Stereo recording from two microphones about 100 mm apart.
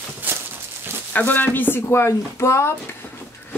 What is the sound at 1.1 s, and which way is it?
Speech, 20° left (ahead or behind).